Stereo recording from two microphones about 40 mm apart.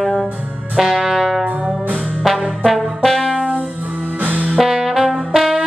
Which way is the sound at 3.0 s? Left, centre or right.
Centre.